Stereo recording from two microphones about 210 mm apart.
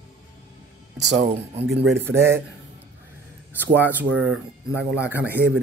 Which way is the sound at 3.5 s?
10° right (ahead or behind).